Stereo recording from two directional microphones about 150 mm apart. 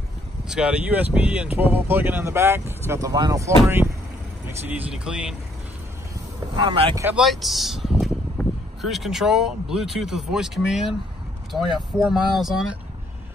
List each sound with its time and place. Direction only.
0.5 s speech: 5° right (ahead or behind)
6.5 s speech: 35° right (ahead or behind)
7.2 s speech: centre (ahead or behind)